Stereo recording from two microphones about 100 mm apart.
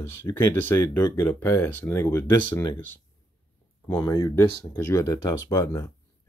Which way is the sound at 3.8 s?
20° left (ahead or behind).